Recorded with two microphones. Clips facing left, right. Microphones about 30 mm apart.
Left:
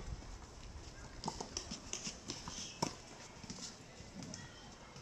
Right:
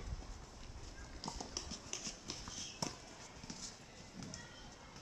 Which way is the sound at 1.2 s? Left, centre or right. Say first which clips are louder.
Left 2 dB; centre.